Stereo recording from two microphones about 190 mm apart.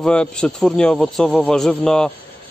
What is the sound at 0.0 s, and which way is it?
Speech, 5° left (ahead or behind).